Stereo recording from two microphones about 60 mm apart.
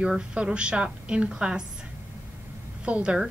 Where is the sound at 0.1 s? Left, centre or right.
Centre.